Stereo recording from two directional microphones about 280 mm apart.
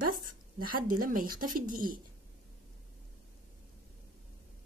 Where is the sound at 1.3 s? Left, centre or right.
Right.